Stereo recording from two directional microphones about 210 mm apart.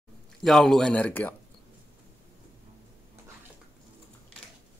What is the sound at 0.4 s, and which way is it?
Speech, centre (ahead or behind).